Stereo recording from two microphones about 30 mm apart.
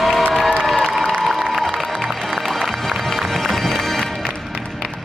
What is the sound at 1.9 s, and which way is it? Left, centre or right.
Music, centre.